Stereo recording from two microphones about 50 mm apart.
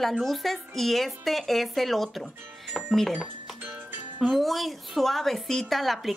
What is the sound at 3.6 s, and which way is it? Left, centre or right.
Music, right.